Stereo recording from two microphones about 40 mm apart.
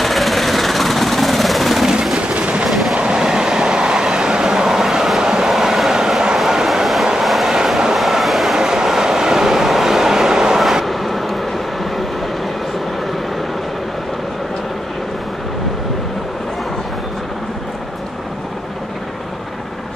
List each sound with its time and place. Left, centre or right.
0.0 s vehicle: centre
2.1 s a sound: right
2.9 s train: centre
5.5 s vehicle: centre
7.2 s train: centre
8.5 s vehicle: centre
10.9 s vehicle: centre